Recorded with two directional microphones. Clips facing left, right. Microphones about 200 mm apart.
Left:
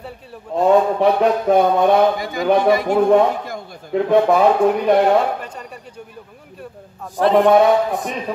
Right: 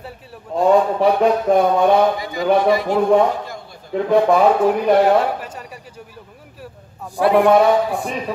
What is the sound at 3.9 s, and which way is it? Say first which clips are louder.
Speech: even; centre (ahead or behind).